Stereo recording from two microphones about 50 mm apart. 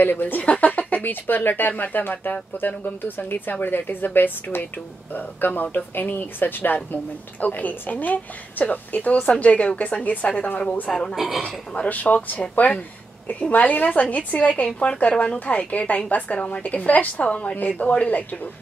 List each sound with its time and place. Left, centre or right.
0.0 s speech: left
0.4 s a woman's voice: left
10.9 s speech: centre
11.1 s speech: centre
11.4 s a woman's voice: left